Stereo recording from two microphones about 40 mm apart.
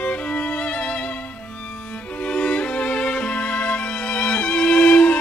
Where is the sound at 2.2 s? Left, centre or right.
Left.